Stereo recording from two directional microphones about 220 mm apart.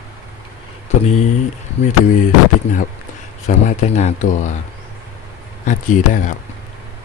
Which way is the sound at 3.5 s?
30° left (ahead or behind).